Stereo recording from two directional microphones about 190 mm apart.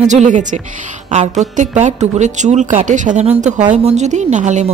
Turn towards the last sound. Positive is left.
turn(degrees=-40)  # may be behind; listen again after turning